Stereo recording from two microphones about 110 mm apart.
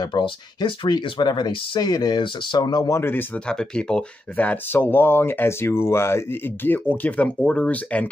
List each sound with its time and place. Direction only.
0.0 s speech: 40° left (ahead or behind)
3.0 s speech: 20° left (ahead or behind)